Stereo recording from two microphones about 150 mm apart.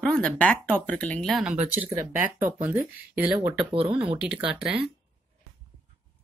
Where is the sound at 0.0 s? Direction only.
5° left (ahead or behind).